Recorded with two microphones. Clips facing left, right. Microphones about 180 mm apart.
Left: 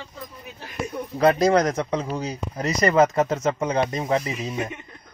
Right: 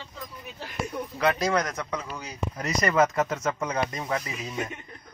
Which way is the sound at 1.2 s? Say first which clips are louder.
Left 7 dB; 35° left (ahead or behind).